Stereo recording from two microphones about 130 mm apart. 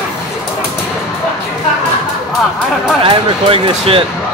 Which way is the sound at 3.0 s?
45° right (ahead or behind).